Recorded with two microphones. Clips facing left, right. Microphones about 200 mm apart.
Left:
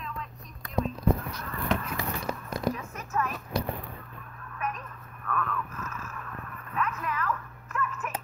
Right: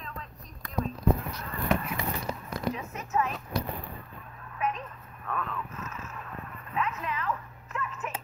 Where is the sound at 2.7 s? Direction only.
20° right (ahead or behind).